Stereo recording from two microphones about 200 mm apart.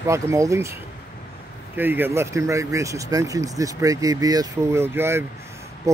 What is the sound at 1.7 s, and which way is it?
Speech, 10° right (ahead or behind).